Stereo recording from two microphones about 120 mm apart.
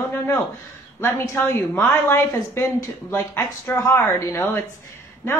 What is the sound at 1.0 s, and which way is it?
A woman's voice, 20° left (ahead or behind).